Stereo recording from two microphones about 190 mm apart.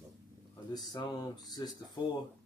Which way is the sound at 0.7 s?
20° left (ahead or behind).